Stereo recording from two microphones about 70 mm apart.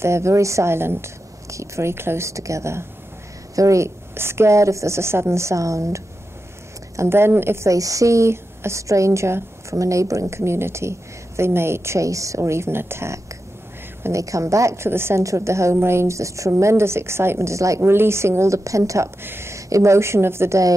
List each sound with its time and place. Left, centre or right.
0.0 s a woman's voice: right
7.0 s a woman's voice: right
7.7 s a woman's voice: right
14.0 s a woman's voice: right
19.2 s a woman's voice: right